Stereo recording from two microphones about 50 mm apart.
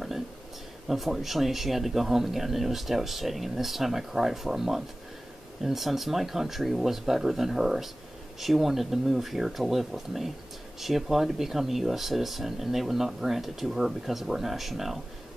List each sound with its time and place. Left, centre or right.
0.8 s speech: centre